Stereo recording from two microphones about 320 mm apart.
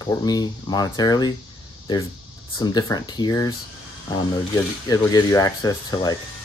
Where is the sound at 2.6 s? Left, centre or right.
Centre.